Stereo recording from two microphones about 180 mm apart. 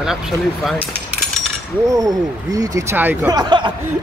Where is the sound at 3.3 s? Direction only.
25° right (ahead or behind).